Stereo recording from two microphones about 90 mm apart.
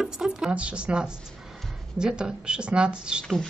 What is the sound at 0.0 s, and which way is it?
A woman's voice, 5° right (ahead or behind).